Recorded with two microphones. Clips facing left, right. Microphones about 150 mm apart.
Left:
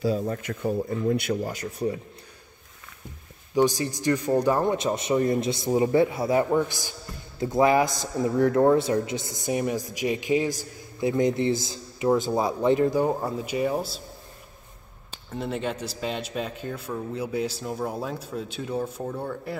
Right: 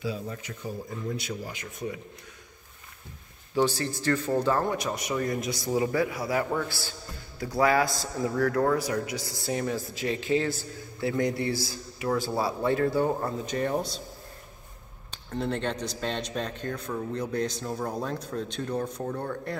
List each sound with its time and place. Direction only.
0.0 s speech: 45° left (ahead or behind)
1.5 s speech: 35° left (ahead or behind)
3.5 s a man's voice: 15° left (ahead or behind)
15.0 s speech: 5° left (ahead or behind)